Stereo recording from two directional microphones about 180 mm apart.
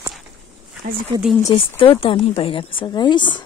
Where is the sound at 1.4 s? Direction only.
30° left (ahead or behind).